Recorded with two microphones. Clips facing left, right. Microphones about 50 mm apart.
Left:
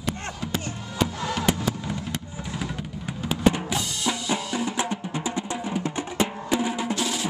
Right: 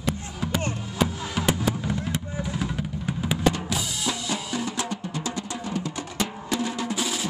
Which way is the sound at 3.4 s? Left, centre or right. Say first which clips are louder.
Left 4 dB; centre.